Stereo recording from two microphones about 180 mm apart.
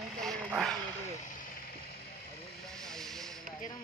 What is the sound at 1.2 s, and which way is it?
Speech, 45° left (ahead or behind).